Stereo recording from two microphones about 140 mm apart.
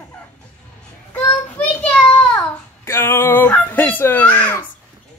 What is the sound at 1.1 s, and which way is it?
Child singing, 10° left (ahead or behind).